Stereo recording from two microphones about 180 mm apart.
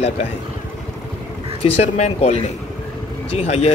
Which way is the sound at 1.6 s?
35° left (ahead or behind).